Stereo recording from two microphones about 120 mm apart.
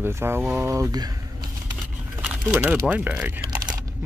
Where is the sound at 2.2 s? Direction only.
15° right (ahead or behind).